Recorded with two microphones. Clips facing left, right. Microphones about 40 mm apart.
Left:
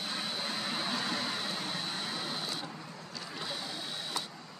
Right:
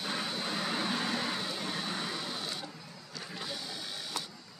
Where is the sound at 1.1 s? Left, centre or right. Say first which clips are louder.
Right 1 dB; right.